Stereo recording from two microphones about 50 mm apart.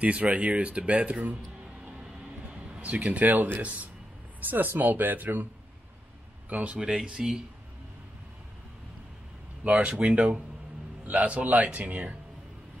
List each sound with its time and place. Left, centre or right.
0.0 s speech: right
2.7 s speech: right
6.5 s speech: right
7.1 s speech: centre
9.7 s speech: right